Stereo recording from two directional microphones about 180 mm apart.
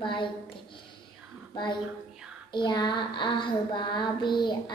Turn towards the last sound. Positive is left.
turn(degrees=25)  # may be behind; listen again after turning